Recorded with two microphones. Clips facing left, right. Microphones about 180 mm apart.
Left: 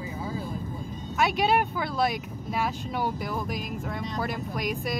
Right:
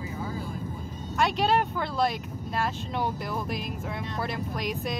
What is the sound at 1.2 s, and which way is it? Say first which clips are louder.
Speech: left 1 dB; 5° left (ahead or behind).